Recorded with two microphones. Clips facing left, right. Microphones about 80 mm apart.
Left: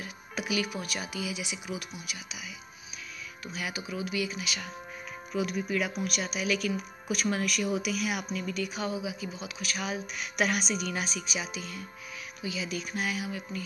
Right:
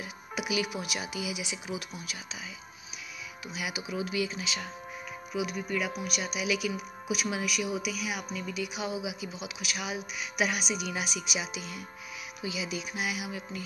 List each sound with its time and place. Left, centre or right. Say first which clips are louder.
0.0 s speech: right 1 dB; centre
3.5 s speech: right 1 dB; centre
5.3 s speech: left 2 dB; centre